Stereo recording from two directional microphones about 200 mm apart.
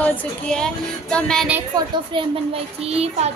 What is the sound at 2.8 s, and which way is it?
Child singing, 30° right (ahead or behind).